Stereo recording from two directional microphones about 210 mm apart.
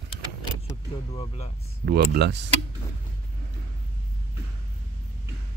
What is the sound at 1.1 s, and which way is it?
Speech, 30° left (ahead or behind).